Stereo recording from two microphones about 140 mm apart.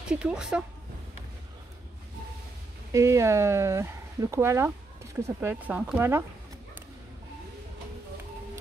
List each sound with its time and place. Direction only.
0.1 s speech: 5° right (ahead or behind)
2.9 s speech: 20° right (ahead or behind)